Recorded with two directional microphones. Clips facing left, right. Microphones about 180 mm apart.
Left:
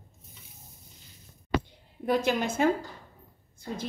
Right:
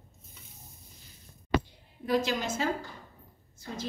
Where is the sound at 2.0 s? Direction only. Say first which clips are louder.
Left 2 dB; 55° left (ahead or behind).